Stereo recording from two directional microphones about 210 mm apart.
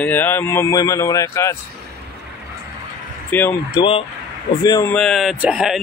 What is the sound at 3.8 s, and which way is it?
Speech, 25° left (ahead or behind).